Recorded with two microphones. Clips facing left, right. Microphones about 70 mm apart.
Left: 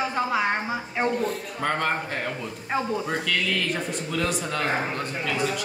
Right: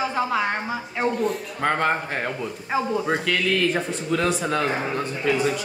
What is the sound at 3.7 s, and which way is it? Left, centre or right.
A man's voice, right.